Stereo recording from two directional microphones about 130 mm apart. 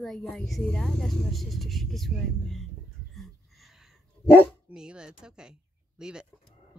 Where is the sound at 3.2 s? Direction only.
Centre (ahead or behind).